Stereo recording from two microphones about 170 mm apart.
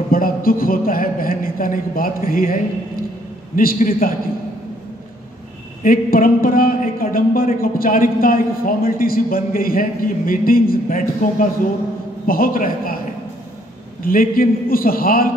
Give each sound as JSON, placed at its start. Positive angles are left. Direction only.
{"t": 0.1, "sound": "a man's voice", "side_deg": 60}
{"t": 5.8, "sound": "a man's voice", "side_deg": 55}
{"t": 14.0, "sound": "a man's voice", "side_deg": 60}